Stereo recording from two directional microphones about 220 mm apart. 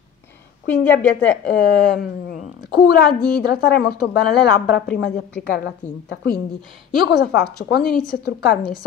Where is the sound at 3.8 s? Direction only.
45° left (ahead or behind).